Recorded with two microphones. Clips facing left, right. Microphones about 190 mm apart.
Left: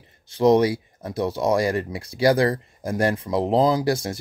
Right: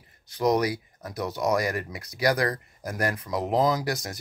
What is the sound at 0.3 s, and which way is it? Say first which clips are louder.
Speech: left 7 dB; 25° left (ahead or behind).